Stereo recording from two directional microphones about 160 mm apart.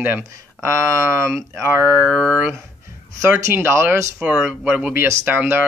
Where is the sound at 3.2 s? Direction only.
15° right (ahead or behind).